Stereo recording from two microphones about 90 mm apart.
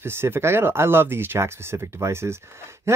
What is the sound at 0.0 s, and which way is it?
Speech, 25° right (ahead or behind).